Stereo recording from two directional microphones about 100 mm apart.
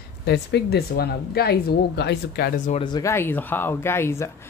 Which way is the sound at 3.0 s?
30° left (ahead or behind).